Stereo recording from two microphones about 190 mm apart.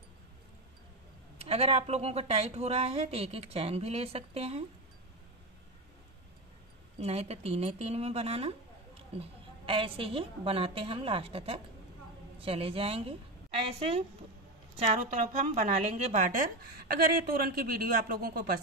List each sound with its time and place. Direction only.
1.4 s a woman's voice: 30° right (ahead or behind)
7.0 s a woman's voice: 35° right (ahead or behind); by 18.6 s 55° right (ahead or behind)